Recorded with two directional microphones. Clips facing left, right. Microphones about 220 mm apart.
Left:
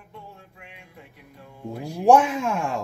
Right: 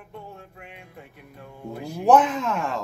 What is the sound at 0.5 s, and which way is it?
Speech, 50° right (ahead or behind).